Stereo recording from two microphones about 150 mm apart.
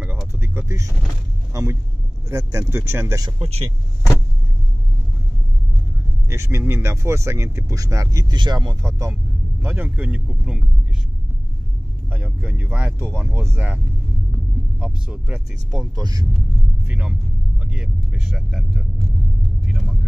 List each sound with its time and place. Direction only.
0.4 s vehicle: 20° right (ahead or behind)
1.5 s speech: 20° right (ahead or behind)
3.3 s speech: 35° right (ahead or behind)
6.2 s speech: 15° right (ahead or behind); by 10.7 s centre (ahead or behind)
12.1 s speech: 10° right (ahead or behind)
14.8 s speech: 5° right (ahead or behind)
15.8 s speech: 25° right (ahead or behind)
16.3 s vehicle: 10° right (ahead or behind)
17.6 s speech: 5° right (ahead or behind)
19.6 s vehicle: centre (ahead or behind)